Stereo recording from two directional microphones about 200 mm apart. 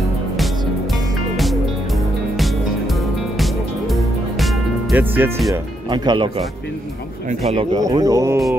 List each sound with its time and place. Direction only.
1.3 s music: centre (ahead or behind)
5.9 s speech: 20° right (ahead or behind)
7.7 s speech: 20° right (ahead or behind)